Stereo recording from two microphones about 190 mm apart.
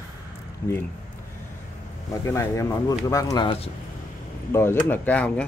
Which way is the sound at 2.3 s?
15° left (ahead or behind).